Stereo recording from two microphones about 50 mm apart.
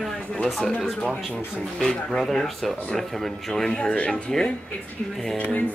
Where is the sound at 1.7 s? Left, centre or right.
Centre.